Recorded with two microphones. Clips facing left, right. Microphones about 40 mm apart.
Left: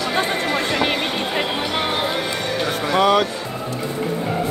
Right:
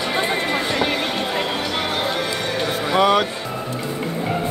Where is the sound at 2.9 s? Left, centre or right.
Centre.